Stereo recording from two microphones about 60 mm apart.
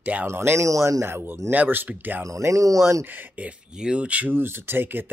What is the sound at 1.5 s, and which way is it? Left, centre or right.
Speech, right.